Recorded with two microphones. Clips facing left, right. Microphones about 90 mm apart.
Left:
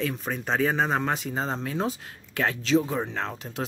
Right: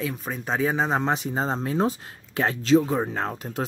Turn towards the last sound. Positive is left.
turn(degrees=-40)  # may be behind; listen again after turning